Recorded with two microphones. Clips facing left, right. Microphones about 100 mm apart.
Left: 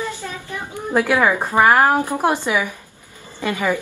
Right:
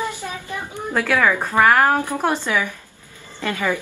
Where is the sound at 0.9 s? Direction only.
15° left (ahead or behind).